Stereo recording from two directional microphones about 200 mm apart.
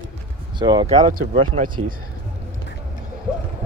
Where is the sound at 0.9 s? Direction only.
40° right (ahead or behind).